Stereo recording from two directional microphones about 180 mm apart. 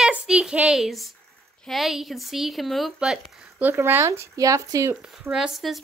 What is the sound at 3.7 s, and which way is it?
Speech, 15° right (ahead or behind).